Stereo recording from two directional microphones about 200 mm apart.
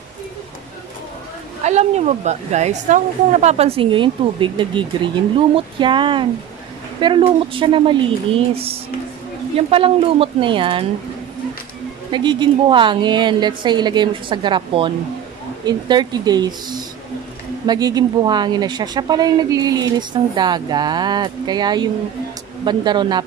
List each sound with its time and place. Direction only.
1.6 s speech: 35° right (ahead or behind)
9.6 s speech: 30° right (ahead or behind)
12.1 s speech: 25° right (ahead or behind)